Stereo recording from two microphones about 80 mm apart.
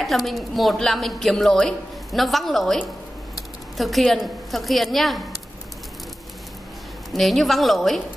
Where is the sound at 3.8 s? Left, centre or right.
Centre.